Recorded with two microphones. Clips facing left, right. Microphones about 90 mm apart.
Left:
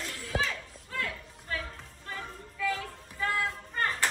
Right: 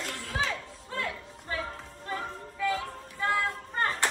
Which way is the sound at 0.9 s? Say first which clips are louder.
Right 1 dB; 25° right (ahead or behind).